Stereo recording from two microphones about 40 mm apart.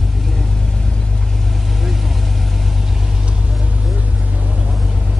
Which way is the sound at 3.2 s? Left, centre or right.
Right.